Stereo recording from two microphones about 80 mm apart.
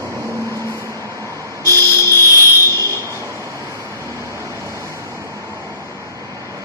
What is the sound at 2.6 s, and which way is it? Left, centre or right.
Vehicle, right.